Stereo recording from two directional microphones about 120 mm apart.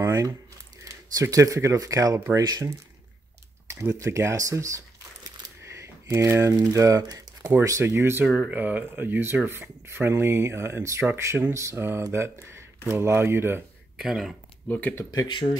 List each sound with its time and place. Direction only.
0.0 s speech: 20° right (ahead or behind)
3.7 s speech: 25° right (ahead or behind)
8.3 s speech: 10° right (ahead or behind)
13.9 s speech: 5° right (ahead or behind)
14.7 s speech: 15° left (ahead or behind)
15.0 s speech: 40° left (ahead or behind)